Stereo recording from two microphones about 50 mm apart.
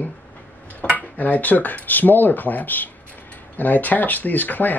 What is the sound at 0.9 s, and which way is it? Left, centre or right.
Speech, left.